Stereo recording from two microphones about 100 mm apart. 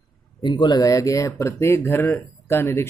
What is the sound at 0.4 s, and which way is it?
Speech, 50° left (ahead or behind).